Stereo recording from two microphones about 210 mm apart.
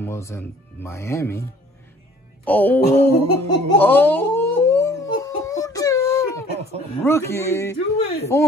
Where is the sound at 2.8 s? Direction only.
50° left (ahead or behind).